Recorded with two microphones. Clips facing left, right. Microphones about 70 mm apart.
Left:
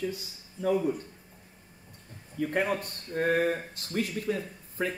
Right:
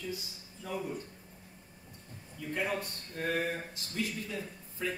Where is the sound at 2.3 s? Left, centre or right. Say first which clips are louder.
Left 6 dB; left.